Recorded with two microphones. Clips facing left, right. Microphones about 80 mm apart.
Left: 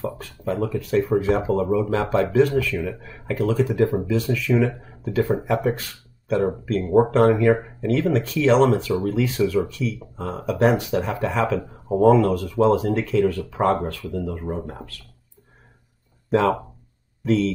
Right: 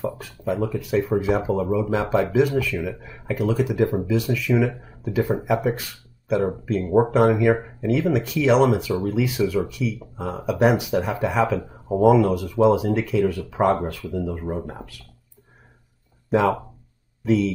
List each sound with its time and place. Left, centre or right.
0.0 s speech: centre
14.3 s speech: centre
16.3 s speech: centre